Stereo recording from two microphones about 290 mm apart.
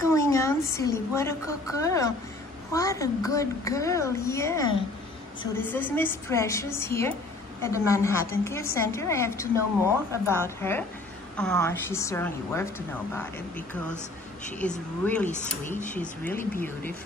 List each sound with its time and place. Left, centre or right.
0.0 s a woman's voice: centre
15.2 s speech: left
15.9 s a woman's voice: centre